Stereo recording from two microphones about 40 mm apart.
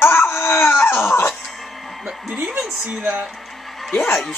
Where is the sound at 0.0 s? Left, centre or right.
Left.